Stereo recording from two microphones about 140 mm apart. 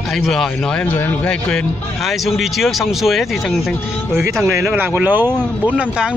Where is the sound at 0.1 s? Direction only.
Centre (ahead or behind).